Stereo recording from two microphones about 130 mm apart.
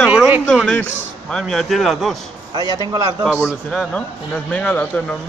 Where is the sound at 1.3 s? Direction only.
5° left (ahead or behind).